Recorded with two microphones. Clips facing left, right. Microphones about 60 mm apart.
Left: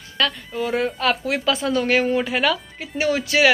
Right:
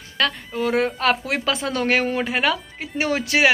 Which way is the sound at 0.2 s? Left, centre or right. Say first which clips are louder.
Even; right.